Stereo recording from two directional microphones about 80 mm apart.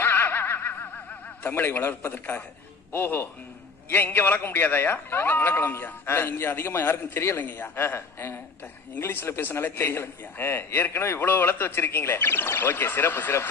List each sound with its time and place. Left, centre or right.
0.0 s snicker: left
2.9 s a man's voice: left